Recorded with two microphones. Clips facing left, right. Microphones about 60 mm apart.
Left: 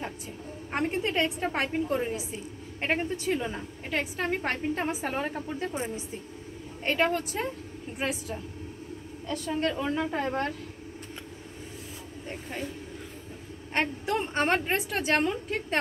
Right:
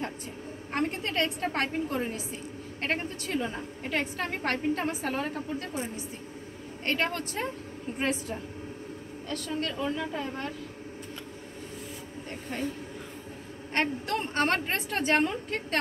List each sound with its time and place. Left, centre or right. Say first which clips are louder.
0.7 s a woman's voice: left 2 dB; centre
6.8 s a woman's voice: left 3 dB; centre
9.3 s a woman's voice: left 4 dB; left
9.8 s a woman's voice: left 3 dB; left
10.2 s speech: left 6 dB; left
12.3 s a woman's voice: right 1 dB; centre
13.7 s a woman's voice: left 1 dB; centre
14.9 s a woman's voice: right 2 dB; centre